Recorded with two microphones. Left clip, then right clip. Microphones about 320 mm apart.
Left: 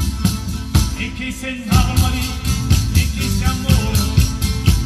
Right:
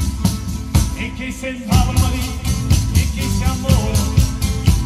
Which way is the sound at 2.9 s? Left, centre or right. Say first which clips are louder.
Left 1 dB; centre.